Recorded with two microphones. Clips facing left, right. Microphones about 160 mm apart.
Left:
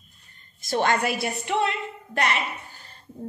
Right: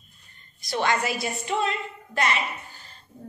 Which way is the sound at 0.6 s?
50° left (ahead or behind).